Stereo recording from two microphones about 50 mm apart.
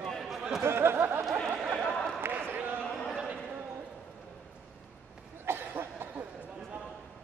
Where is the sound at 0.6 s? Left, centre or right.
Right.